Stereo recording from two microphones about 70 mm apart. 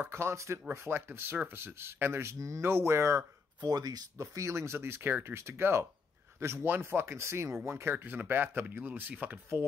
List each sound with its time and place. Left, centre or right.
0.0 s speech: right
2.3 s speech: right
2.6 s speech: right
3.6 s speech: right
4.2 s speech: right